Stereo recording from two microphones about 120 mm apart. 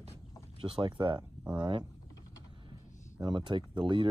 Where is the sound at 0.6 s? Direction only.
45° right (ahead or behind).